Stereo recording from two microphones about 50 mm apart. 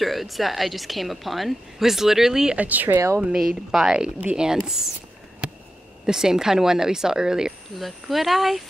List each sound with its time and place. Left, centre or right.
0.0 s a woman's voice: centre
2.5 s speech: right
3.3 s a woman's voice: centre
6.0 s a woman's voice: centre
7.8 s a woman's voice: centre